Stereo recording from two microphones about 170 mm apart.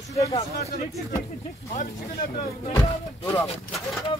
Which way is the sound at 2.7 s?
15° left (ahead or behind).